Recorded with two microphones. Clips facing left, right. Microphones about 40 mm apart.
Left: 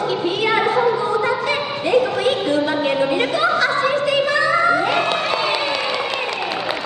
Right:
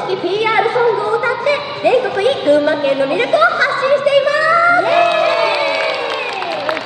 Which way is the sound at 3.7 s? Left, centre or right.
Centre.